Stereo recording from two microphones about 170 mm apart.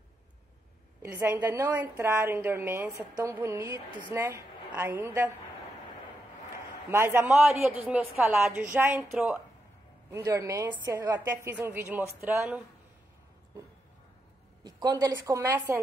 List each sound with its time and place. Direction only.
1.0 s a woman's voice: 15° right (ahead or behind)
6.9 s a woman's voice: 15° right (ahead or behind)
7.2 s a woman's voice: 5° right (ahead or behind)
10.1 s a woman's voice: 20° right (ahead or behind)
14.6 s a woman's voice: 25° right (ahead or behind)